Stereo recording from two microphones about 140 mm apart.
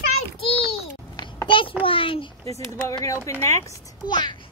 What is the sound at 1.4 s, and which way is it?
Speech, 35° left (ahead or behind).